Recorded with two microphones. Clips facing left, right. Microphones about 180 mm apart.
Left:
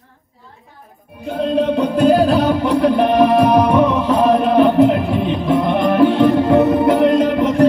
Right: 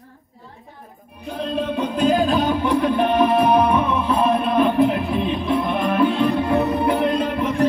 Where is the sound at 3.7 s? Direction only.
75° left (ahead or behind).